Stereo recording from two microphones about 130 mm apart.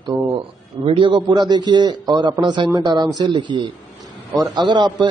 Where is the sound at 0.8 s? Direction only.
45° right (ahead or behind).